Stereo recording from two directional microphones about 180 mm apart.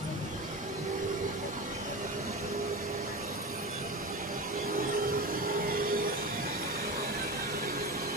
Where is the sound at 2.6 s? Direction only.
55° right (ahead or behind).